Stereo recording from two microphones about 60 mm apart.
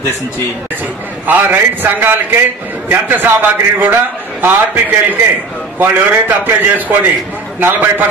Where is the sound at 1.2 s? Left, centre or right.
Right.